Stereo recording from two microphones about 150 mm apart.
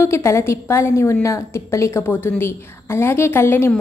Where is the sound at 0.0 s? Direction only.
20° left (ahead or behind).